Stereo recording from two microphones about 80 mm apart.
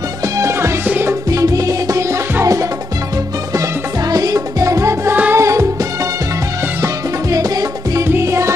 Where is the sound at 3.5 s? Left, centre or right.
Right.